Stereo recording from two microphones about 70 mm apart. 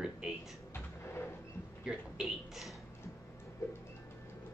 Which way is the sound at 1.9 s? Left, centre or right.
Centre.